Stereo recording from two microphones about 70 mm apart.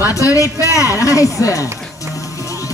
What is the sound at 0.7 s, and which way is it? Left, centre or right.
Speech, left.